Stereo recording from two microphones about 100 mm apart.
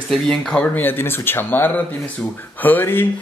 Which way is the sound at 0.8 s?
20° left (ahead or behind).